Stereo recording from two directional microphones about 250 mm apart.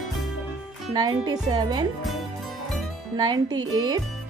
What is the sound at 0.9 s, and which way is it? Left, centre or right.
Speech, centre.